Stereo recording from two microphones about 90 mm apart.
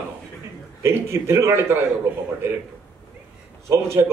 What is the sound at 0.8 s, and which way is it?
Speech, 30° right (ahead or behind).